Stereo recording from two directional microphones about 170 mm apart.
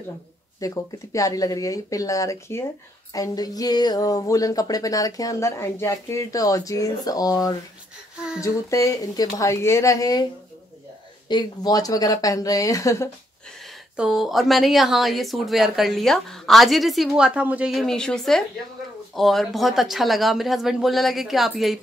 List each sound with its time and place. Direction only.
0.6 s speech: 20° left (ahead or behind)
11.2 s speech: 25° left (ahead or behind)
13.9 s speech: 5° right (ahead or behind)